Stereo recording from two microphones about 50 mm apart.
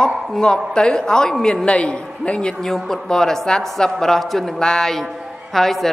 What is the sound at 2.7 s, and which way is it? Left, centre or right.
A woman's voice, centre.